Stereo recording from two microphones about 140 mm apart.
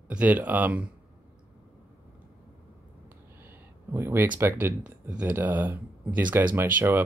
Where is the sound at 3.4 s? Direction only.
15° right (ahead or behind).